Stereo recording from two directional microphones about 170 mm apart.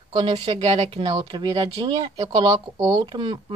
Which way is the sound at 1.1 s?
25° right (ahead or behind).